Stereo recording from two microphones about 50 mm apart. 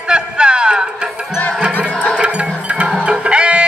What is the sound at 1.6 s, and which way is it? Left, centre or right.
Music, right.